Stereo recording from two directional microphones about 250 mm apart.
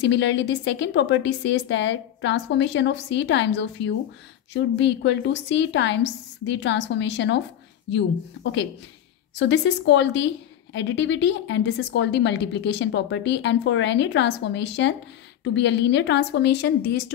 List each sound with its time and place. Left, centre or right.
0.0 s a woman's voice: left
9.3 s a woman's voice: left